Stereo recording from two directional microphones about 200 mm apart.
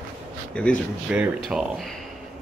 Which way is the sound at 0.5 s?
5° left (ahead or behind).